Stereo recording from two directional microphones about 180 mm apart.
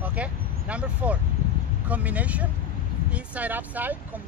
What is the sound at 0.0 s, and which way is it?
Speech, 10° right (ahead or behind).